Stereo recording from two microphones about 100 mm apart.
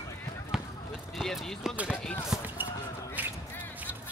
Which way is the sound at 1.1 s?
Centre (ahead or behind).